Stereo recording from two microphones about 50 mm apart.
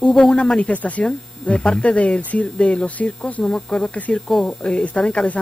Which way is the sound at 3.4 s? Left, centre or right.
Centre.